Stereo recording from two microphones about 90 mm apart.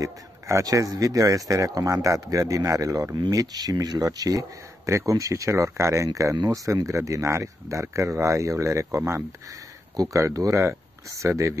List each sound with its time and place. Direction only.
0.0 s speech: 35° right (ahead or behind)
3.2 s speech: 45° right (ahead or behind)